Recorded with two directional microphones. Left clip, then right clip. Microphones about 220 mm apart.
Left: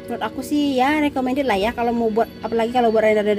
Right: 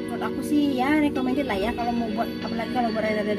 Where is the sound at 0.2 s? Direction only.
45° left (ahead or behind).